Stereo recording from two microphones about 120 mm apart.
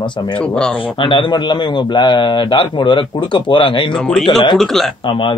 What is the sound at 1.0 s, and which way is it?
Speech, 40° left (ahead or behind).